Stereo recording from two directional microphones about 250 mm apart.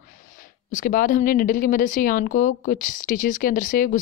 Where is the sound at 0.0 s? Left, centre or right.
Left.